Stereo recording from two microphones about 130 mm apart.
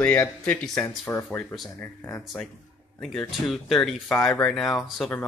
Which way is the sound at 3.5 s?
Centre (ahead or behind).